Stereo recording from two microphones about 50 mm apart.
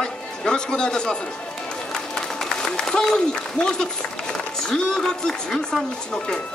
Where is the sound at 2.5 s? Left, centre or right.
Centre.